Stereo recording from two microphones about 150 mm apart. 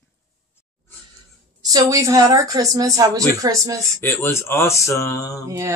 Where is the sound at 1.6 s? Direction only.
20° right (ahead or behind).